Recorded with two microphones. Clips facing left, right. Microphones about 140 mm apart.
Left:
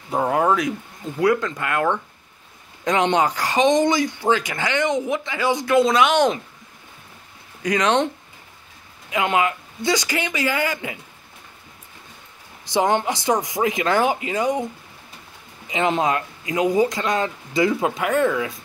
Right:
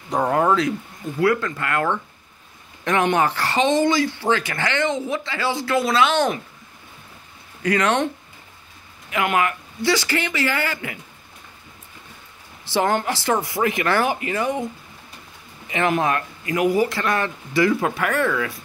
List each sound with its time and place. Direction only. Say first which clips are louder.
0.1 s speech: even; 10° left (ahead or behind)
7.6 s speech: left 1 dB; 15° left (ahead or behind)
9.1 s speech: left 1 dB; 20° left (ahead or behind)
12.6 s speech: left 1 dB; 20° left (ahead or behind)
15.7 s speech: even; 20° left (ahead or behind)